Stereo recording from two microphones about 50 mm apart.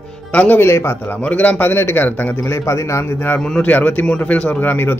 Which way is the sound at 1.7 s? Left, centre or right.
Left.